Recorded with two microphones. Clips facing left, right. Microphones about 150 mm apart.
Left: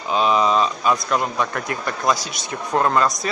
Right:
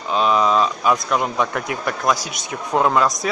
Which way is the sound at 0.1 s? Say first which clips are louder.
Right 1 dB; centre (ahead or behind).